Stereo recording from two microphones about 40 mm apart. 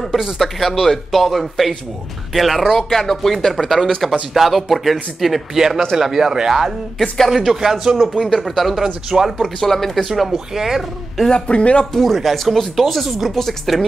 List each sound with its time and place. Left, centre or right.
0.1 s speech: centre
2.9 s speech: centre
5.9 s speech: centre
7.0 s speech: centre
8.1 s speech: centre
8.8 s speech: centre
9.6 s speech: centre
10.0 s speech: centre
11.2 s speech: left
11.8 s speech: centre